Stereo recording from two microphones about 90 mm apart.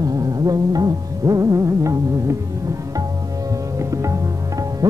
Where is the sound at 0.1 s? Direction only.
45° right (ahead or behind).